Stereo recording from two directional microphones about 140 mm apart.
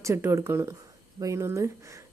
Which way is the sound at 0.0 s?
20° right (ahead or behind).